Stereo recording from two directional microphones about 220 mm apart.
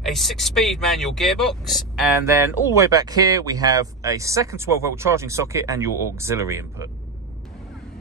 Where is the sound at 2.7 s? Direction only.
15° right (ahead or behind).